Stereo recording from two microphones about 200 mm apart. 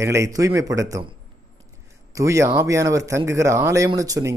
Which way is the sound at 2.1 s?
15° right (ahead or behind).